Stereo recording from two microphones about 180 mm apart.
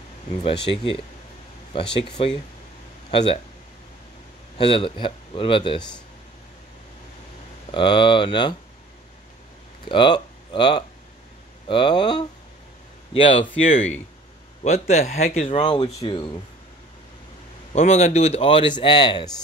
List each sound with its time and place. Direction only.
0.3 s speech: 35° left (ahead or behind)
4.6 s speech: 30° left (ahead or behind)
7.7 s speech: 25° left (ahead or behind)
9.8 s speech: 25° left (ahead or behind)
17.7 s speech: 35° left (ahead or behind)